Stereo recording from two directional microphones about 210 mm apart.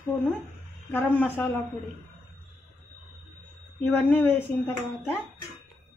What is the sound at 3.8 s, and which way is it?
Speech, 10° left (ahead or behind).